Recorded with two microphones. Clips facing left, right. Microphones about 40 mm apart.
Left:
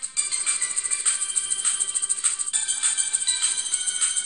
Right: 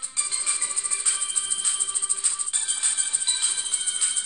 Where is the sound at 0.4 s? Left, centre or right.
Left.